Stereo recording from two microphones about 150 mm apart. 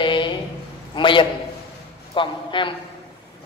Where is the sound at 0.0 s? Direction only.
35° left (ahead or behind).